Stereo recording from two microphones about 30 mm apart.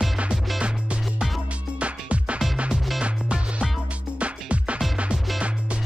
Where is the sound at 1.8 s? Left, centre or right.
Right.